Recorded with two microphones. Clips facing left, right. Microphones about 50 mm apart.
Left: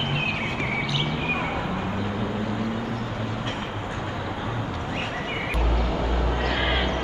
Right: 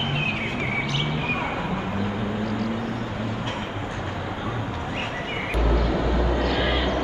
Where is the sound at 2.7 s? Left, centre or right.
Centre.